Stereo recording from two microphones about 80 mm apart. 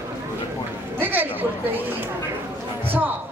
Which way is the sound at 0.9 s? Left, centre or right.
Right.